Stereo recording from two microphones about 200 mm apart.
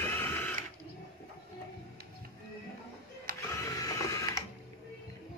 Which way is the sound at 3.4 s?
15° left (ahead or behind).